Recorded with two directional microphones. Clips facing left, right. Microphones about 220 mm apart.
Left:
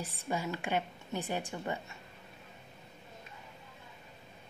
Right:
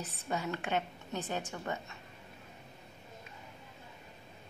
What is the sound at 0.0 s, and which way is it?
A woman's voice, 10° left (ahead or behind).